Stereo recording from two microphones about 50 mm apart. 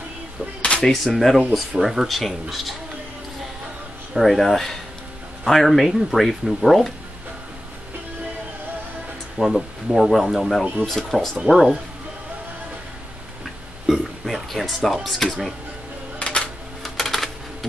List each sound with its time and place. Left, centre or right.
0.6 s a sound: left
0.8 s speech: centre
4.1 s speech: centre
9.4 s speech: right
9.8 s speech: centre
13.8 s a sound: centre
15.0 s speech: centre
16.2 s music: left
16.8 s typewriter: centre